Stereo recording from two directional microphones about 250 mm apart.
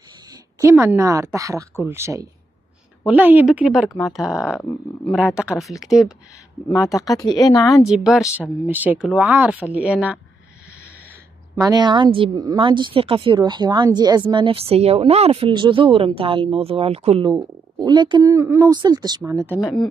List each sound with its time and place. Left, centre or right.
0.6 s speech: centre
6.8 s speech: centre
7.7 s speech: centre
11.5 s a woman's voice: centre
19.6 s speech: centre